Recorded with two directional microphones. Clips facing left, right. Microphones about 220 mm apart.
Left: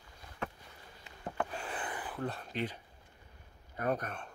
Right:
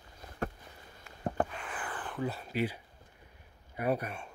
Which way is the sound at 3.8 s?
10° right (ahead or behind).